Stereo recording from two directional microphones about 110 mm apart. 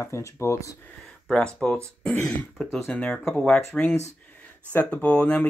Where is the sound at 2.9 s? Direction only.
10° left (ahead or behind).